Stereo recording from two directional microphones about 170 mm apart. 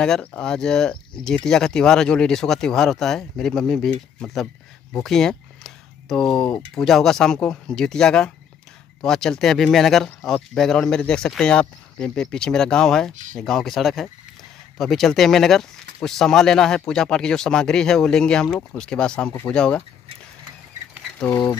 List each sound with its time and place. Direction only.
0.0 s speech: 5° left (ahead or behind)
13.1 s speech: 50° right (ahead or behind)
13.4 s speech: centre (ahead or behind)
21.2 s speech: 15° left (ahead or behind)